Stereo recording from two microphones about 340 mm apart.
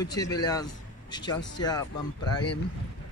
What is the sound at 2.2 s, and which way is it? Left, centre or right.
Speech, left.